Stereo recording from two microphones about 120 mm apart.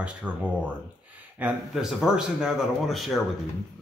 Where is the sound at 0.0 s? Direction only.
10° right (ahead or behind).